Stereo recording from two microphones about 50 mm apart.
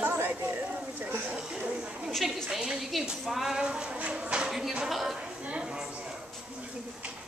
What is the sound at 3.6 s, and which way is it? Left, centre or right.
Speech, centre.